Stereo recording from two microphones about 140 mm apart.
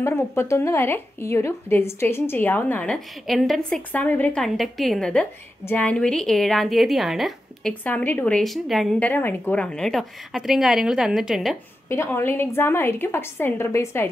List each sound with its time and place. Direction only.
0.0 s speech: 15° left (ahead or behind); by 3.8 s centre (ahead or behind)
3.9 s a woman's voice: 10° left (ahead or behind)
7.8 s speech: 15° left (ahead or behind)
8.4 s a woman's voice: centre (ahead or behind)
9.0 s a woman's voice: 15° left (ahead or behind); by 11.5 s centre (ahead or behind)
11.9 s speech: 20° left (ahead or behind)